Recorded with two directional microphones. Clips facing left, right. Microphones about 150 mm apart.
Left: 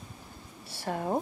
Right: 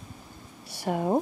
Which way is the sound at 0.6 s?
15° right (ahead or behind).